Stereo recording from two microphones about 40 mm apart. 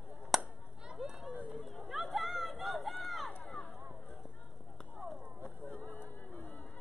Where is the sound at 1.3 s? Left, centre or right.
Right.